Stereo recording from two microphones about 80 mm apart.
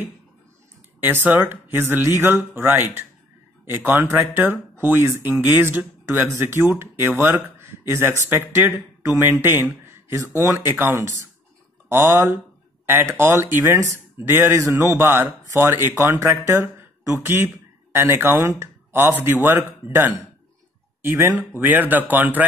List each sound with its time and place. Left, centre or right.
1.0 s speech: right
16.0 s speech: right